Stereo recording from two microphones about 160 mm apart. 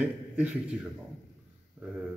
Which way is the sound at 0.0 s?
5° right (ahead or behind).